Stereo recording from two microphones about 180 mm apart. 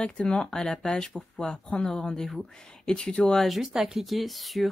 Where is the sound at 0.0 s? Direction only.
5° left (ahead or behind).